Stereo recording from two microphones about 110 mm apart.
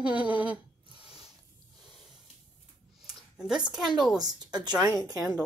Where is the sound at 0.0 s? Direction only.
10° right (ahead or behind).